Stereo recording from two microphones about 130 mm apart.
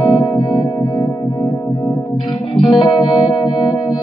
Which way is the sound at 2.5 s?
40° left (ahead or behind).